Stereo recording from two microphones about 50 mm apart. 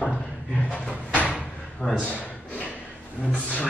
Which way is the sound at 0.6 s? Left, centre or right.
Left.